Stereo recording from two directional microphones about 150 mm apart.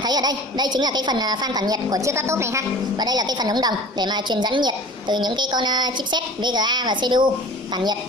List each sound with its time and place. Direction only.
0.0 s a woman's voice: 25° right (ahead or behind)